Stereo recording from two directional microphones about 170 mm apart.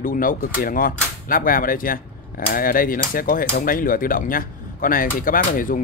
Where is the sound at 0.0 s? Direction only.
55° left (ahead or behind).